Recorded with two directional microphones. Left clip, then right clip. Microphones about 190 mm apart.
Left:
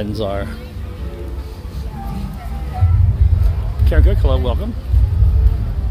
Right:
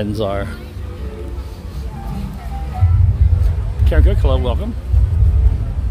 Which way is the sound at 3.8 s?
5° right (ahead or behind).